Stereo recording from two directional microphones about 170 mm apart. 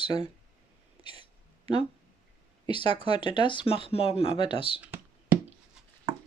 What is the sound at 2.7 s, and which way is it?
Speech, 30° left (ahead or behind).